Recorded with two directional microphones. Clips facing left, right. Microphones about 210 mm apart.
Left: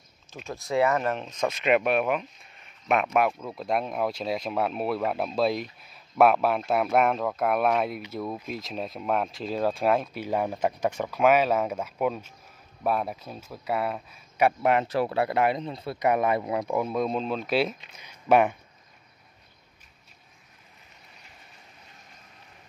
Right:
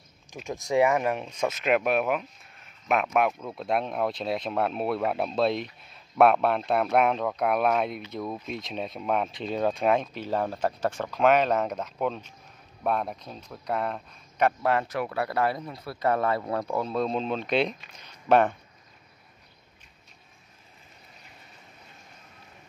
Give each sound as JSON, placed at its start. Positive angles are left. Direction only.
{"t": 0.5, "sound": "speech", "side_deg": -15}
{"t": 14.6, "sound": "speech", "side_deg": 20}
{"t": 14.9, "sound": "speech", "side_deg": 30}